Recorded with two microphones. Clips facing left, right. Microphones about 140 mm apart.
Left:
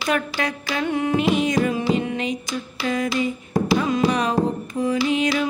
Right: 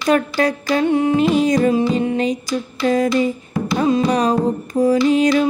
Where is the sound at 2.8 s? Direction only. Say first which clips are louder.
Right 7 dB; 35° right (ahead or behind).